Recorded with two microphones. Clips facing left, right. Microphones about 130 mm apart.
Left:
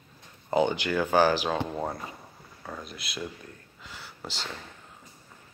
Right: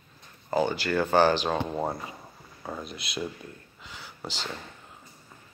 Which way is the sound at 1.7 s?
5° right (ahead or behind).